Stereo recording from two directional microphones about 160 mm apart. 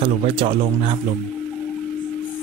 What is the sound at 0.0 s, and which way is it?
Speech, 35° right (ahead or behind).